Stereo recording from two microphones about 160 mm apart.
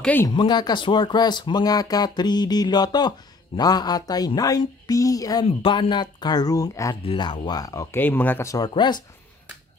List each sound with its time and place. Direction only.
0.0 s speech: 10° left (ahead or behind)
0.3 s speech: 25° left (ahead or behind)
7.0 s speech: 30° left (ahead or behind)